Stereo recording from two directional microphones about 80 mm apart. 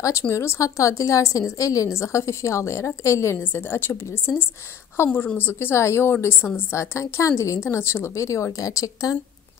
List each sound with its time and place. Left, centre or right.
0.0 s a woman's voice: left